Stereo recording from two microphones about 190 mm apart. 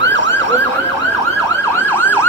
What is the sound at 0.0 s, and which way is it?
Emergency vehicle, 75° right (ahead or behind).